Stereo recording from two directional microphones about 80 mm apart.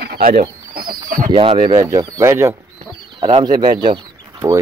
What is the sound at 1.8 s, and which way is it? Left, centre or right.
Speech, right.